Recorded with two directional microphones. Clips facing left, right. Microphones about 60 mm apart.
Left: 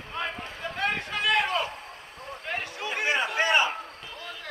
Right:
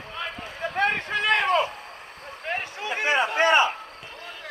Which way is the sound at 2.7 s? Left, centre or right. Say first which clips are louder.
Right 1 dB; right.